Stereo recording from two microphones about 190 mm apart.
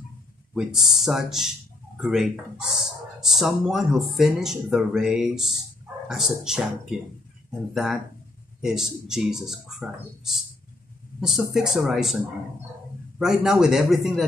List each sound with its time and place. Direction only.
0.6 s speech: centre (ahead or behind)
7.7 s speech: centre (ahead or behind)
13.2 s speech: 5° right (ahead or behind)